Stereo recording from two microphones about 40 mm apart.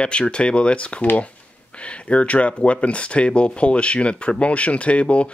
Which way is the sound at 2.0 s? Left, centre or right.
Left.